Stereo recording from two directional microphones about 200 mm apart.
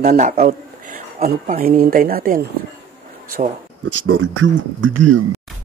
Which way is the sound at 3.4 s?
35° right (ahead or behind).